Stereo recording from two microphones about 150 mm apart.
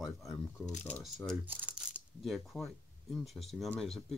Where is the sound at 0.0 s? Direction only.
Centre (ahead or behind).